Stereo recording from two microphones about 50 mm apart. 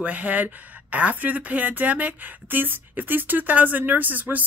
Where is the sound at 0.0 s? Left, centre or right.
Right.